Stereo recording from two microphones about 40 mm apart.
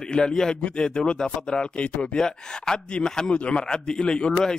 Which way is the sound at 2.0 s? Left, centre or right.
Centre.